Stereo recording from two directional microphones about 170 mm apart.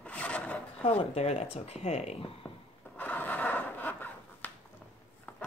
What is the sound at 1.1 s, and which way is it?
Speech, 40° left (ahead or behind).